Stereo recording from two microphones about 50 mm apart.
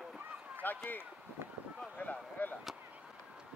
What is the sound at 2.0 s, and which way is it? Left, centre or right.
Speech, left.